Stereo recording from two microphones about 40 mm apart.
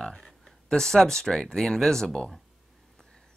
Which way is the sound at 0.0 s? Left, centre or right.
Centre.